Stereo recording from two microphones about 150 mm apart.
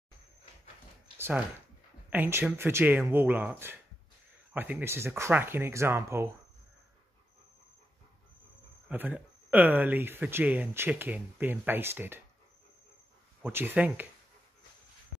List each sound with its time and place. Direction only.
1.1 s a sound: 15° right (ahead or behind)
2.0 s speech: 15° right (ahead or behind)
8.8 s speech: 10° right (ahead or behind)
13.4 s speech: 15° right (ahead or behind)